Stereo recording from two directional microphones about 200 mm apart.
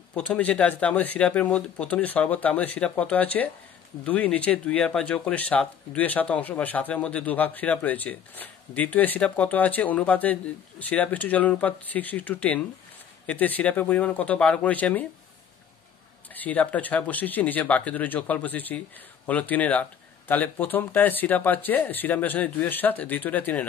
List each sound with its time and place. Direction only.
0.1 s speech: 5° left (ahead or behind)
16.3 s speech: 10° left (ahead or behind)